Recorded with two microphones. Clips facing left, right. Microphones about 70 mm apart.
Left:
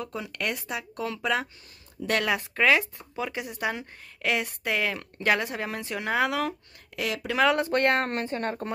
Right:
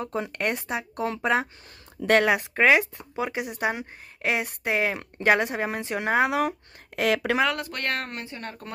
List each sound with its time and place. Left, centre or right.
0.0 s speech: right
7.0 s speech: right
7.5 s speech: left
8.1 s speech: left